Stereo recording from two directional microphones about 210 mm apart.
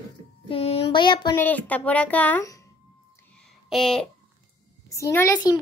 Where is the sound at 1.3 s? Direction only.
10° left (ahead or behind).